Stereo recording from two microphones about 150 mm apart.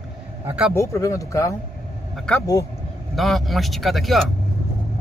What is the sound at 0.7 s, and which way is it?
Speech, 20° left (ahead or behind).